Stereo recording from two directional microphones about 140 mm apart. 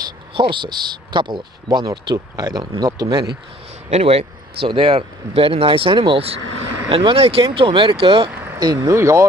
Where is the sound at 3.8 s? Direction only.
45° right (ahead or behind).